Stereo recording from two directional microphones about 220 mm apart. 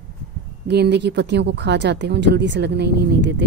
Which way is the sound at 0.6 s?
50° right (ahead or behind).